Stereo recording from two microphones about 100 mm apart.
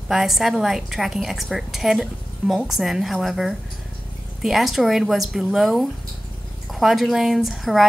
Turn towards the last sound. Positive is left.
turn(degrees=0)  # may be behind; listen again after turning